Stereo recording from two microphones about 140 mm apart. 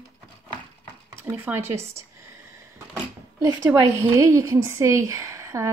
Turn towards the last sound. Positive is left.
turn(degrees=-20)  # may be behind; listen again after turning